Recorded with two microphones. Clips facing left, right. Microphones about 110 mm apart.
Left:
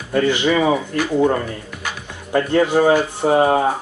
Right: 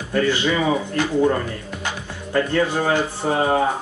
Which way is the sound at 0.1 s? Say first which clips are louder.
Left 3 dB; 20° left (ahead or behind).